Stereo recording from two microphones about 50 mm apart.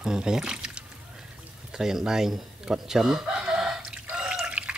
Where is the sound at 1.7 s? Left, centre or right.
Centre.